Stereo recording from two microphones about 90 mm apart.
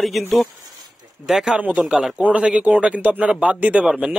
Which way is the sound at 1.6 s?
15° right (ahead or behind).